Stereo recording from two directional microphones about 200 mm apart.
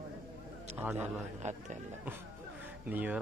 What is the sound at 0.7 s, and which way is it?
Speech, 10° right (ahead or behind).